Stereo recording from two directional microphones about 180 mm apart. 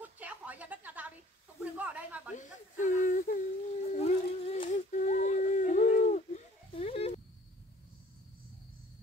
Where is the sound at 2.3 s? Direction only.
45° left (ahead or behind).